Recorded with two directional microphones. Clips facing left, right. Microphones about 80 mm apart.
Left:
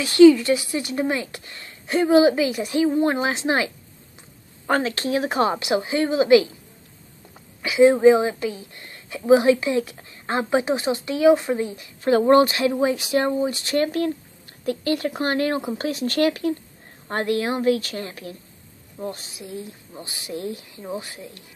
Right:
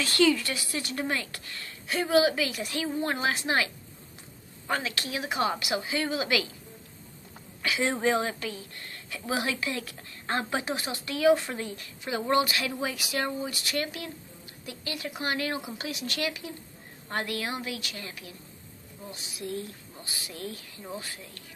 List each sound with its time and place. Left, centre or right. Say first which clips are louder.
0.0 s speech: left 12 dB; centre
4.6 s speech: left 9 dB; left
7.6 s speech: left 13 dB; centre
12.0 s speech: left 11 dB; left
17.1 s speech: left 9 dB; left
18.9 s a woman's voice: left 12 dB; left
19.4 s speech: even; centre
19.9 s speech: left 9 dB; left